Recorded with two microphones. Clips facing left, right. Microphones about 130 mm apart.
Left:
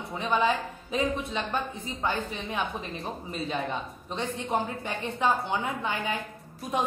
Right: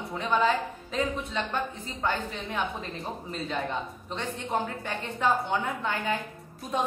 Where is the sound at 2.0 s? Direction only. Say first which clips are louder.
Right 1 dB; 25° left (ahead or behind).